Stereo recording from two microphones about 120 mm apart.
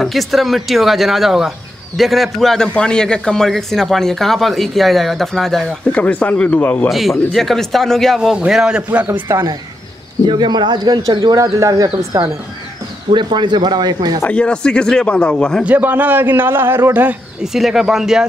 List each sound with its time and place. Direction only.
0.0 s a man's voice: centre (ahead or behind)
6.9 s a man's voice: centre (ahead or behind)
10.2 s speech: 40° right (ahead or behind)
13.1 s speech: 40° right (ahead or behind)
14.2 s speech: 10° left (ahead or behind)
15.6 s a man's voice: 15° right (ahead or behind)
17.4 s a man's voice: 5° right (ahead or behind)